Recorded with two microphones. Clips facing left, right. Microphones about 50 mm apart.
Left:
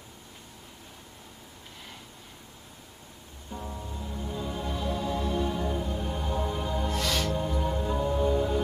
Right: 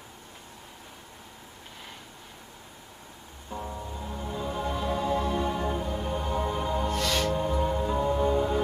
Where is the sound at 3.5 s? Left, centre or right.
Centre.